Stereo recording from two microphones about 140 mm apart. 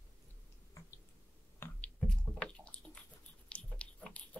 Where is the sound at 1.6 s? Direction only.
15° left (ahead or behind).